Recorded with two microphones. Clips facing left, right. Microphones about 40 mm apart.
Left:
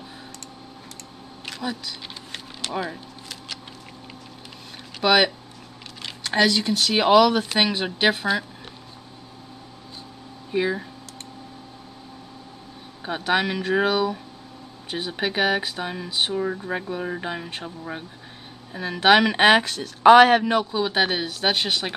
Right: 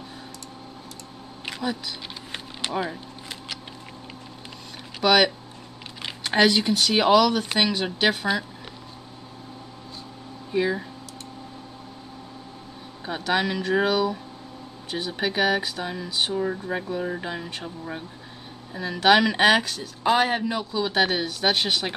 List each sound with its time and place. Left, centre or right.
1.6 s speech: centre
5.0 s speech: centre
6.0 s a sound: centre
6.7 s speech: centre
10.5 s speech: centre
13.0 s speech: centre
16.3 s speech: centre
18.8 s speech: left
19.7 s speech: left
20.7 s speech: centre